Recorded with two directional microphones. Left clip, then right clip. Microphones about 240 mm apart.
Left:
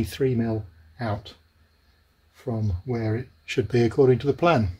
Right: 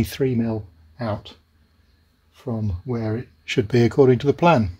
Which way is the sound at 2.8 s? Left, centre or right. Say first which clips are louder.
Right 1 dB; right.